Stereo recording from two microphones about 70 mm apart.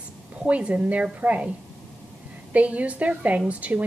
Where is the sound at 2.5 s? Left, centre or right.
Centre.